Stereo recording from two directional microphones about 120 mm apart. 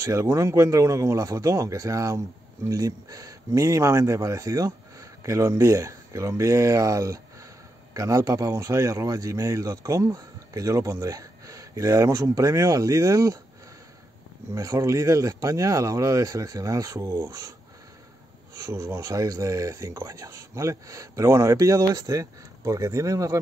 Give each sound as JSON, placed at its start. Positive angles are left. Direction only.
{"t": 0.0, "sound": "speech", "side_deg": -25}
{"t": 14.5, "sound": "speech", "side_deg": -30}